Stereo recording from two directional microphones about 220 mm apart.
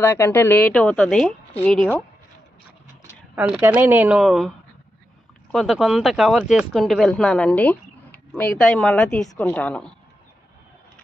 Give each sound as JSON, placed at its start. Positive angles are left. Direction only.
{"t": 0.0, "sound": "a woman's voice", "side_deg": 10}
{"t": 3.3, "sound": "speech", "side_deg": -10}
{"t": 5.5, "sound": "speech", "side_deg": 0}